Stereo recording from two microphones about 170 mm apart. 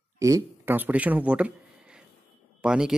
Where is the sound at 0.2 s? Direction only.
15° right (ahead or behind).